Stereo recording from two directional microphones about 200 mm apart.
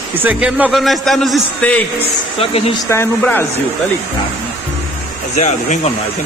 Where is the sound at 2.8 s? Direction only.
15° left (ahead or behind).